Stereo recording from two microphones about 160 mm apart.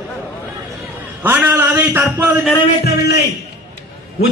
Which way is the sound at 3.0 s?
90° left.